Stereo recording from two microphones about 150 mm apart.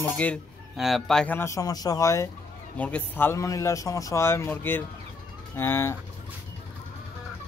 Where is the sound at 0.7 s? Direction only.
Centre (ahead or behind); by 5.9 s 15° left (ahead or behind).